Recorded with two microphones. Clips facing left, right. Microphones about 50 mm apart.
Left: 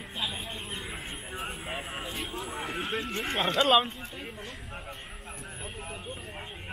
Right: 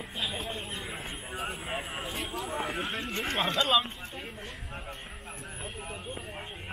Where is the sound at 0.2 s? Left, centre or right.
Centre.